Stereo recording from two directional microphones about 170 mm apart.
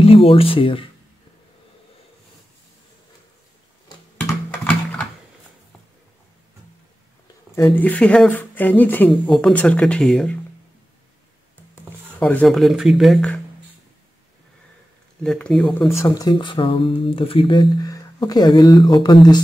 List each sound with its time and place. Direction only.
0.0 s speech: 35° left (ahead or behind)
7.5 s speech: 15° left (ahead or behind)
12.2 s speech: 10° left (ahead or behind)
15.2 s speech: 5° left (ahead or behind)
16.2 s speech: 25° left (ahead or behind)